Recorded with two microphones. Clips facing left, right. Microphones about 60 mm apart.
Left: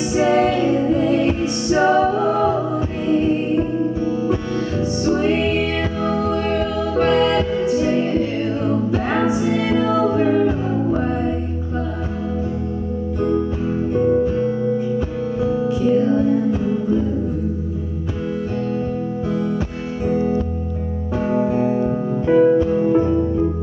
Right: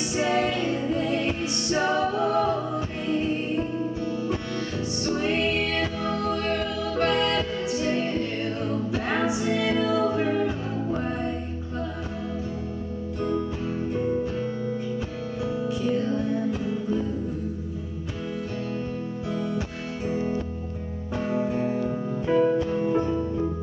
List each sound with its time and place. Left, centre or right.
0.1 s music: centre
13.2 s music: centre
19.3 s music: centre
21.7 s music: centre